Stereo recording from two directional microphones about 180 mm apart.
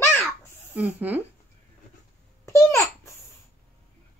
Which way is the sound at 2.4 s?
15° left (ahead or behind).